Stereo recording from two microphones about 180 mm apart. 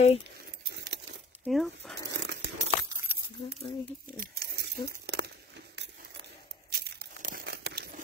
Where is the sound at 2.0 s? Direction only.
70° right (ahead or behind).